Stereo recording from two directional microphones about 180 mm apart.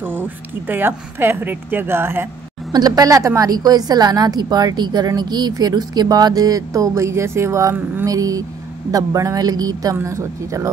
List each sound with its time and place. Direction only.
0.0 s a woman's voice: 10° right (ahead or behind)